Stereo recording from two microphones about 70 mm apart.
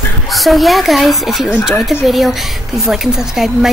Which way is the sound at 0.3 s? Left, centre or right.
Centre.